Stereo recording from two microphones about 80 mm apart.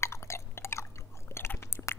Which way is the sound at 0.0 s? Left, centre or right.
Left.